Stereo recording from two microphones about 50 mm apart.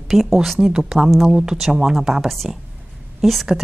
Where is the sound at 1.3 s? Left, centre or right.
Centre.